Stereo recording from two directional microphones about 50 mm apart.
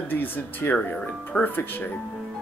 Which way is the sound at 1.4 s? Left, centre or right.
Left.